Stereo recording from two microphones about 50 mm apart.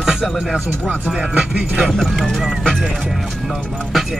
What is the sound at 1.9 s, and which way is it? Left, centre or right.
Speech, centre.